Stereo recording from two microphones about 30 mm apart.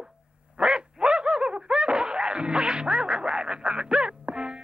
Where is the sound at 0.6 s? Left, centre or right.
Right.